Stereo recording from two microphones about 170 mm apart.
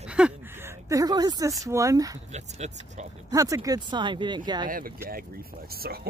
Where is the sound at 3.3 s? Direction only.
20° right (ahead or behind).